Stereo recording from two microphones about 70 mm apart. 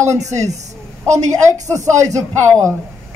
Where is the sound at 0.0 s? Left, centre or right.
Right.